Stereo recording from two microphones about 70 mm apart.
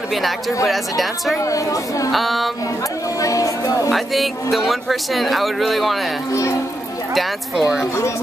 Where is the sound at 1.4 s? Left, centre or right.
Left.